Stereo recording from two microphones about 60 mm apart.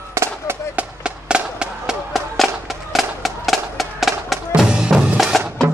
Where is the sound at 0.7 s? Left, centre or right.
Centre.